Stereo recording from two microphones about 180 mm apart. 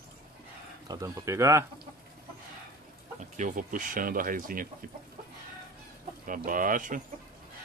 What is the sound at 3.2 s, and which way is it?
Speech, 45° right (ahead or behind).